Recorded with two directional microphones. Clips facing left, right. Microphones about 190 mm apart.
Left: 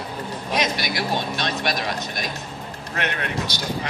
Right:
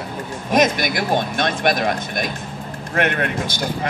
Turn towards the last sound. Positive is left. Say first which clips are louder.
# right 5 dB
turn(degrees=-50)  # may be behind; listen again after turning